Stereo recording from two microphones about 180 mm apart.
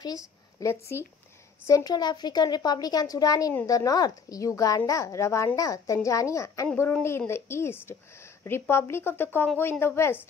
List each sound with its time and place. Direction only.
0.0 s a woman's voice: 20° left (ahead or behind)